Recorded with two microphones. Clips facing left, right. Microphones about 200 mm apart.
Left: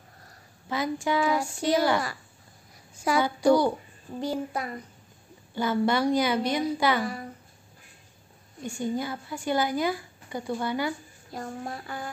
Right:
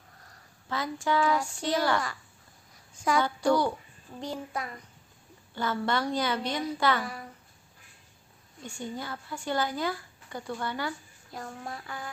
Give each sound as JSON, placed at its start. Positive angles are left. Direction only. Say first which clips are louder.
{"t": 0.7, "sound": "a woman's voice", "louder": "left 3 dB", "side_deg": 15}
{"t": 8.6, "sound": "a woman's voice", "louder": "left 7 dB", "side_deg": 10}
{"t": 11.6, "sound": "a sound", "louder": "left 4 dB", "side_deg": 30}